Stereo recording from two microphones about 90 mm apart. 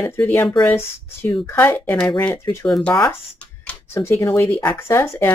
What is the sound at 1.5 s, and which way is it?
Speech, 25° left (ahead or behind).